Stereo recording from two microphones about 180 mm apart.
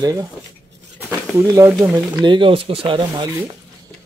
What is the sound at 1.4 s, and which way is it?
Speech, 15° right (ahead or behind).